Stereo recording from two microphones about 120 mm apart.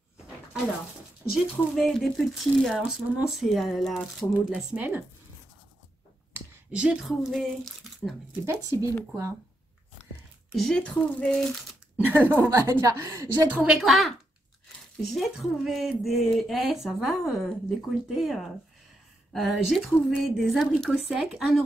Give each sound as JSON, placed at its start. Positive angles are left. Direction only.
{"t": 1.3, "sound": "speech", "side_deg": 0}
{"t": 4.2, "sound": "speech", "side_deg": 15}
{"t": 4.6, "sound": "speech", "side_deg": -10}
{"t": 6.7, "sound": "speech", "side_deg": -10}
{"t": 8.5, "sound": "a woman's voice", "side_deg": -25}
{"t": 10.5, "sound": "speech", "side_deg": 5}
{"t": 12.0, "sound": "a woman's voice", "side_deg": -15}
{"t": 13.5, "sound": "speech", "side_deg": -5}